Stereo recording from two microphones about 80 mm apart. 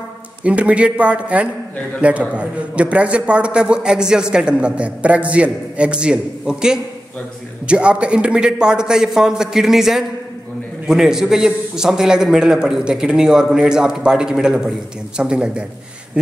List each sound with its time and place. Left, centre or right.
0.4 s a man's voice: centre